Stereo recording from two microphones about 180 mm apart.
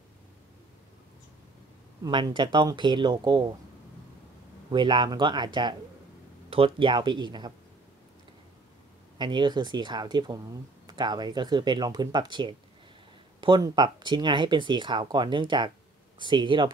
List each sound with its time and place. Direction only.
2.0 s speech: 25° right (ahead or behind)
4.6 s speech: 25° right (ahead or behind)
9.2 s speech: 25° right (ahead or behind)